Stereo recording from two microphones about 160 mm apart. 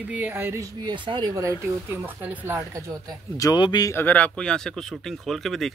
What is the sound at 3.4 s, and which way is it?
Speech, 25° left (ahead or behind).